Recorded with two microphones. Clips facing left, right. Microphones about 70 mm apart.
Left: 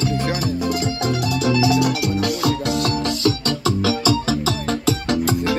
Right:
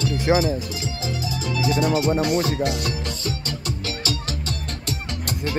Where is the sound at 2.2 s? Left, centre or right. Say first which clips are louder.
Even; left.